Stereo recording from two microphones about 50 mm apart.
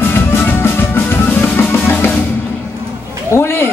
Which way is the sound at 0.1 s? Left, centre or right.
Left.